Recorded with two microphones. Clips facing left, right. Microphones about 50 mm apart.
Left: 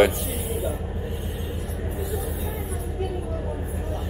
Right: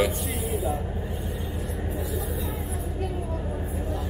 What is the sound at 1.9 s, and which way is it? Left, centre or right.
Vehicle, centre.